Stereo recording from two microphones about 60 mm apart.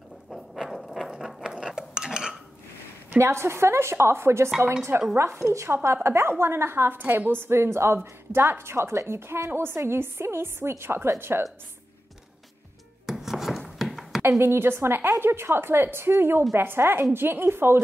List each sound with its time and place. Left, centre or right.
0.3 s a sound: centre
1.1 s dishes: centre
3.1 s a woman's voice: right
13.0 s chopping: centre
13.7 s a sound: centre
14.4 s a woman's voice: right